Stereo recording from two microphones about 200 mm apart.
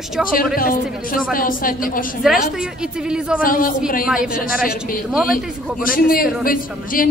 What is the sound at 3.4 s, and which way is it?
Speech, 45° left (ahead or behind).